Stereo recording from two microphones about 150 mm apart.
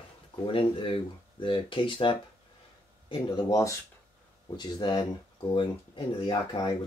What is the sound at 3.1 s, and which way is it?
Speech, 25° left (ahead or behind).